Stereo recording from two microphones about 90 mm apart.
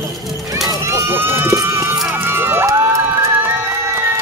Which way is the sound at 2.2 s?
25° right (ahead or behind).